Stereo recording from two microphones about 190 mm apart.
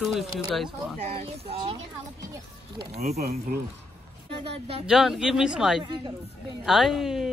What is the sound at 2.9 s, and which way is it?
Speech, 35° right (ahead or behind).